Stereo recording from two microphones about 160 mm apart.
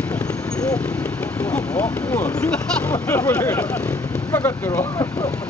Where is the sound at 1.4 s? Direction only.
10° left (ahead or behind).